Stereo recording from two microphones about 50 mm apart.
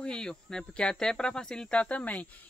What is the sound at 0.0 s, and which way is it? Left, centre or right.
Speech, centre.